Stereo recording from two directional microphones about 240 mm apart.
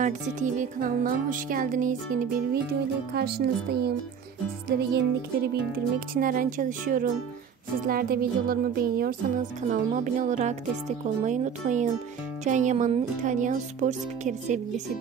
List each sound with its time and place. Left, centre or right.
0.0 s a woman's voice: right